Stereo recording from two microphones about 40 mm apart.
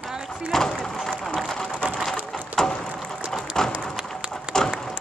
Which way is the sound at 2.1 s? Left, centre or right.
Centre.